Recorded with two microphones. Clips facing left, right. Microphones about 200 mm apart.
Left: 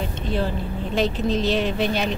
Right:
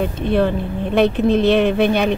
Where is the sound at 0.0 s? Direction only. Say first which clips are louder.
Right 8 dB; 60° right (ahead or behind).